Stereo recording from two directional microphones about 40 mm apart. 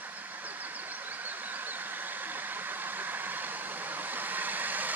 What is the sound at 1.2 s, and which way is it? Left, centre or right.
Vehicle, right.